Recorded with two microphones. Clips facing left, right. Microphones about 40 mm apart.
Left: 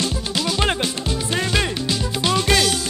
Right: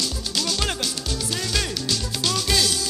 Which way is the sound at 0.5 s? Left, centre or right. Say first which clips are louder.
Left 8 dB; left.